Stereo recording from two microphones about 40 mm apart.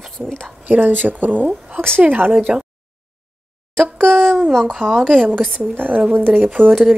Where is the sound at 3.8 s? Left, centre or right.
Centre.